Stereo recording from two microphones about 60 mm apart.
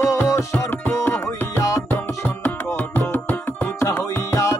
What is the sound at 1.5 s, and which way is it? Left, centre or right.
Music, left.